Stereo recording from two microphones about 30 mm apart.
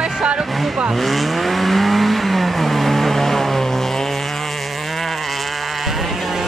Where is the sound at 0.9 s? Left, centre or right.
Centre.